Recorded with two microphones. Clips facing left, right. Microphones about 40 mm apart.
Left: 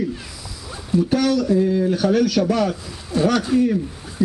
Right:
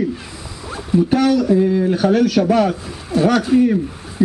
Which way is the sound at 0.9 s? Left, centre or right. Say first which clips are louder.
Right 3 dB; centre.